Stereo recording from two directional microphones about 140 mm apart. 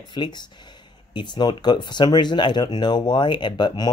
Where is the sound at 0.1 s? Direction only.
30° left (ahead or behind).